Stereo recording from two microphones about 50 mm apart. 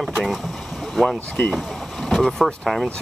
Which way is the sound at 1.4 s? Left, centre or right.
Centre.